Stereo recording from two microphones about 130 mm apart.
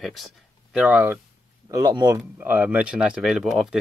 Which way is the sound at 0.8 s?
15° right (ahead or behind).